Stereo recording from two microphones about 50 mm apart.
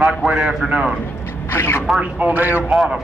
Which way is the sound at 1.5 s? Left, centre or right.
Left.